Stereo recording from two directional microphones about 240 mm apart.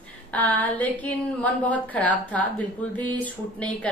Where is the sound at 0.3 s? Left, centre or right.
Centre.